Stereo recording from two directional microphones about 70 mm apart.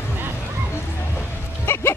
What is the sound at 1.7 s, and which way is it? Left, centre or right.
Music, left.